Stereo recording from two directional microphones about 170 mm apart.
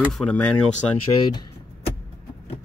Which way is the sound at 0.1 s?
5° left (ahead or behind).